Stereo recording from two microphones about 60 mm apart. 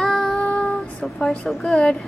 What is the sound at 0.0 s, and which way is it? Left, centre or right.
Child singing, centre.